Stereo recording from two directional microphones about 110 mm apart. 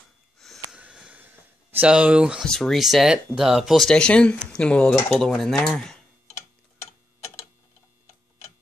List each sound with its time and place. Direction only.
0.4 s wheeze: centre (ahead or behind)
0.7 s a sound: 10° right (ahead or behind)
1.9 s speech: 10° right (ahead or behind)
2.4 s speech: 5° left (ahead or behind)
6.8 s tick-tock: 25° left (ahead or behind)